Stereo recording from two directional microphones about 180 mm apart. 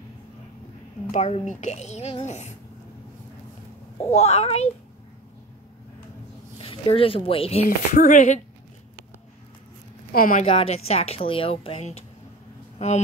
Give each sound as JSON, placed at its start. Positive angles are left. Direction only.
{"t": 1.1, "sound": "speech", "side_deg": 40}
{"t": 4.1, "sound": "speech", "side_deg": 35}
{"t": 6.6, "sound": "speech", "side_deg": 30}
{"t": 7.6, "sound": "speech", "side_deg": 45}
{"t": 10.1, "sound": "speech", "side_deg": 50}
{"t": 10.5, "sound": "speech", "side_deg": 35}